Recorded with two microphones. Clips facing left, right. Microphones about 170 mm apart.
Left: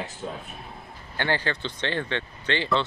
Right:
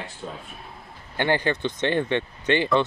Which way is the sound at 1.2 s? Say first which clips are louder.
Right 4 dB; 15° right (ahead or behind).